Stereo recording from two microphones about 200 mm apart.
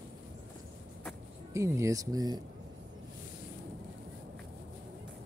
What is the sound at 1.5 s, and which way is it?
Speech, 15° right (ahead or behind).